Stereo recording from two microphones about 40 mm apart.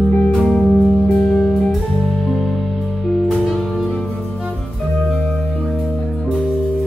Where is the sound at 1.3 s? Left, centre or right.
Centre.